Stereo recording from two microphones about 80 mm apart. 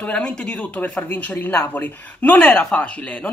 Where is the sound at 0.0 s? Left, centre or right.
Centre.